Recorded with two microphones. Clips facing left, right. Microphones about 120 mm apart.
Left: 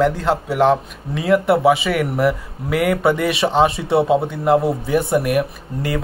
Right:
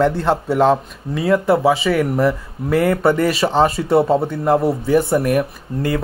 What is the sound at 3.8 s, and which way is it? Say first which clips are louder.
Speech: right 1 dB; 5° left (ahead or behind).